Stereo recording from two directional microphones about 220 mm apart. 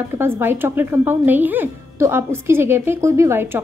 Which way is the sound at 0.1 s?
10° right (ahead or behind).